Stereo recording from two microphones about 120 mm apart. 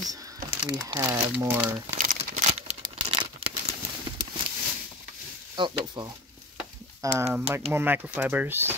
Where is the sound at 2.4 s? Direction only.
70° right (ahead or behind).